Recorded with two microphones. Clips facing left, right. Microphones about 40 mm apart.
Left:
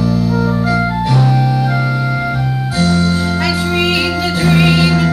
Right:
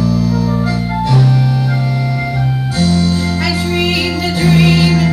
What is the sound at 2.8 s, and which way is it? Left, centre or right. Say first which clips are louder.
Music: even; centre.